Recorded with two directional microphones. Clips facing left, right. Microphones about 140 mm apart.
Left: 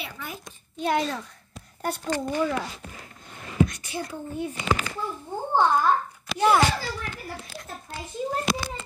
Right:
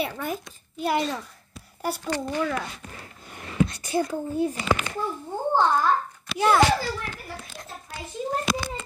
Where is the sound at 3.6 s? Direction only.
35° right (ahead or behind).